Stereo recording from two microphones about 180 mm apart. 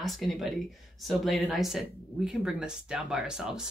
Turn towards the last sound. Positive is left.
turn(degrees=-5)  # may be behind; listen again after turning